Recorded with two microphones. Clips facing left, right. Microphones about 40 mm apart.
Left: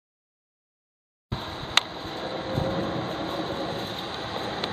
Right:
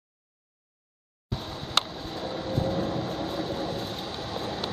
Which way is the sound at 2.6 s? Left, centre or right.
Left.